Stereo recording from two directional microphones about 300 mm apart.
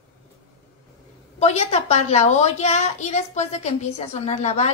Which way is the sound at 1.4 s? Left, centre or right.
Left.